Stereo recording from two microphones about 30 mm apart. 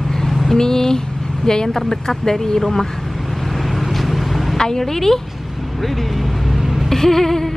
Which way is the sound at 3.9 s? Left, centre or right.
Centre.